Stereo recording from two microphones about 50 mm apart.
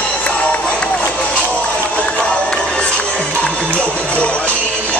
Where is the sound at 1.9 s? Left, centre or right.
Left.